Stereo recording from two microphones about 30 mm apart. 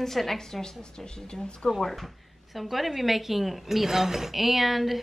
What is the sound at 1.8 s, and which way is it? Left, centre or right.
A woman's voice, centre.